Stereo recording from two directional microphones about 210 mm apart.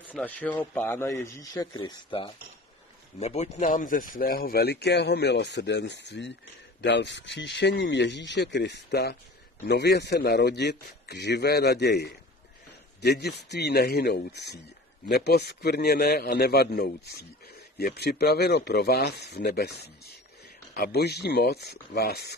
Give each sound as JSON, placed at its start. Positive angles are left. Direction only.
{"t": 0.0, "sound": "a man's voice", "side_deg": 5}